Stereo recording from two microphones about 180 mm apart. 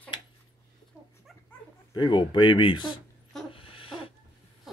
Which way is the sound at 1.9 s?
25° left (ahead or behind).